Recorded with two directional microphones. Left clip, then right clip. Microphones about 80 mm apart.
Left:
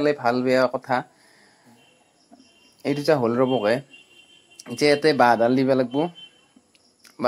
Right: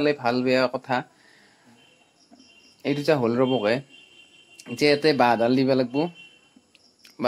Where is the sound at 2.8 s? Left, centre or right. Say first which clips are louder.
Left 2 dB; centre.